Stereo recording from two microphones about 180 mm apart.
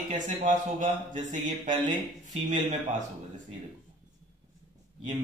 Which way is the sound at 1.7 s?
25° right (ahead or behind).